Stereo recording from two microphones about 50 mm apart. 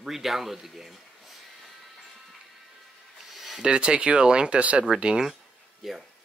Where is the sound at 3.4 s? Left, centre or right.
Centre.